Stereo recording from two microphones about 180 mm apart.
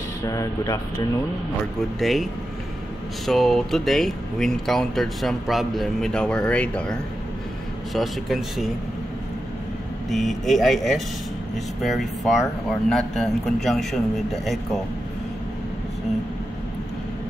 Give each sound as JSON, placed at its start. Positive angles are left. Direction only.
{"t": 0.2, "sound": "speech", "side_deg": 20}
{"t": 2.0, "sound": "speech", "side_deg": 0}
{"t": 3.3, "sound": "speech", "side_deg": 0}
{"t": 10.0, "sound": "speech", "side_deg": 0}